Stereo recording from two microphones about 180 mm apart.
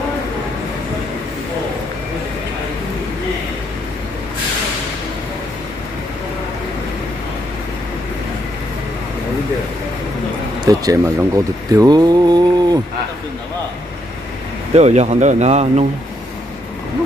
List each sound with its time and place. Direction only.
10.6 s speech: 20° right (ahead or behind)
14.8 s speech: 40° right (ahead or behind)